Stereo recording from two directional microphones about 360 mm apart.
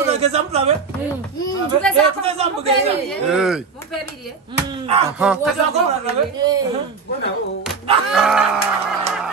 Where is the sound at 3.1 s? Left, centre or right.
Centre.